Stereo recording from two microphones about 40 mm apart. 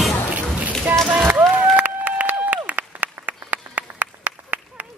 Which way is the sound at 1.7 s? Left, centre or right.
Right.